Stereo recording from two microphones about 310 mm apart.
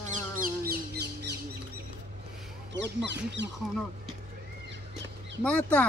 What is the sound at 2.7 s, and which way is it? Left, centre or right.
Speech, right.